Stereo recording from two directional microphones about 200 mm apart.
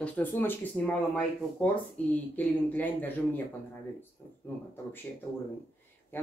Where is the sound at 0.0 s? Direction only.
10° left (ahead or behind).